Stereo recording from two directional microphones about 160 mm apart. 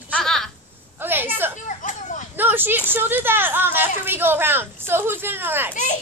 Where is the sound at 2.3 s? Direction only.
10° right (ahead or behind).